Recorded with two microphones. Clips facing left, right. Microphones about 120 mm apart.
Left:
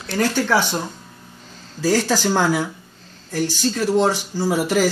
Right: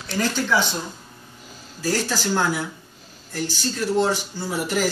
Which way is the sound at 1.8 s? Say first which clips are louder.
Left 6 dB; 90° left.